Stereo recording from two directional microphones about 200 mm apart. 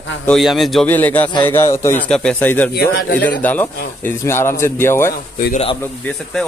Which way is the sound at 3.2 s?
10° left (ahead or behind).